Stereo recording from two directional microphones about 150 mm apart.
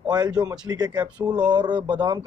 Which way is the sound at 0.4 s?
25° right (ahead or behind).